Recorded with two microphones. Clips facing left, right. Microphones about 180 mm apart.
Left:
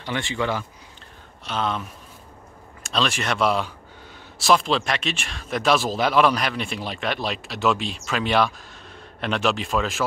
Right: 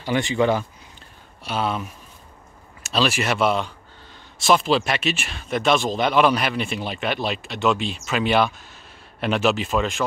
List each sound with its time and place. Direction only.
0.0 s speech: 15° right (ahead or behind); by 10.0 s centre (ahead or behind)